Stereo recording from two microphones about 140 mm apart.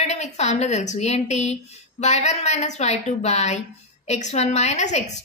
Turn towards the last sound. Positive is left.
turn(degrees=55)  # may be behind; listen again after turning